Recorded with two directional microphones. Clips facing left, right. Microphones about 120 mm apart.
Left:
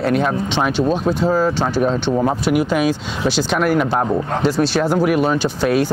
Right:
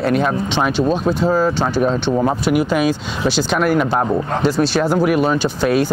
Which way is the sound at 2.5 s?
20° right (ahead or behind).